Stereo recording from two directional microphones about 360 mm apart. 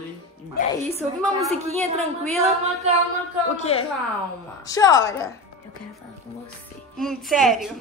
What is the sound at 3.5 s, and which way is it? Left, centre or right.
A man's voice, centre.